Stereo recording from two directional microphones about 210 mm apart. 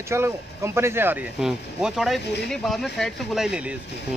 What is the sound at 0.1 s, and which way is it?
Speech, 10° right (ahead or behind).